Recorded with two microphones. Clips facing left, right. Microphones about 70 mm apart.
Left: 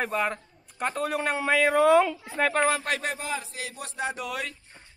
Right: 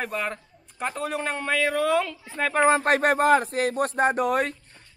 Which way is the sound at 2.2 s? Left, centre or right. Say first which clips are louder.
Left 1 dB; centre.